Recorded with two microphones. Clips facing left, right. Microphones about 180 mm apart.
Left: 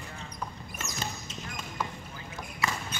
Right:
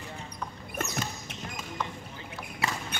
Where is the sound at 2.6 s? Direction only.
30° right (ahead or behind).